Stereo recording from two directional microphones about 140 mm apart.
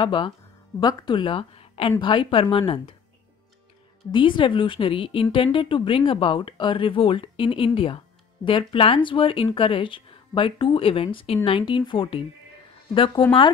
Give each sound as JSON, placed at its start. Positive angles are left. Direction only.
{"t": 0.0, "sound": "speech", "side_deg": 35}
{"t": 4.1, "sound": "speech", "side_deg": 35}